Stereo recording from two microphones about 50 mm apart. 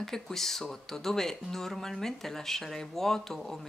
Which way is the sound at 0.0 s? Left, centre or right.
Centre.